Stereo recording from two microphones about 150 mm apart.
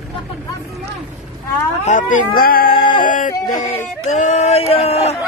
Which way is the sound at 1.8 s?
60° left (ahead or behind).